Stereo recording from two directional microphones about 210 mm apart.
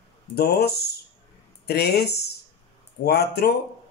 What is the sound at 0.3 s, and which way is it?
Speech, 50° left (ahead or behind).